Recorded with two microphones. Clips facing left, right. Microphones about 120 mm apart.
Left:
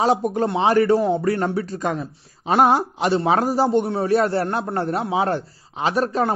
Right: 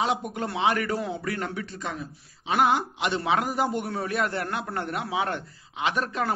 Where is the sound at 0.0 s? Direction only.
35° left (ahead or behind).